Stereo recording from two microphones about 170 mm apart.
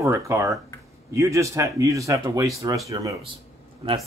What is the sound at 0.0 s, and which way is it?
Speech, 15° right (ahead or behind).